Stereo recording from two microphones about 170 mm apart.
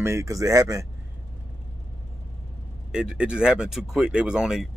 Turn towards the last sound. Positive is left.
turn(degrees=-5)  # may be behind; listen again after turning